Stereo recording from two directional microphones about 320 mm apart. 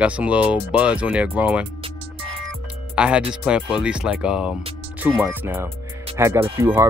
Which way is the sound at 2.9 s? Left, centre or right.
Centre.